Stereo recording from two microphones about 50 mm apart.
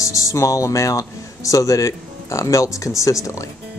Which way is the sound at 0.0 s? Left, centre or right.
Left.